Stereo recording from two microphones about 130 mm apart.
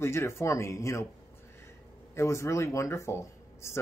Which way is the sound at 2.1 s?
20° left (ahead or behind).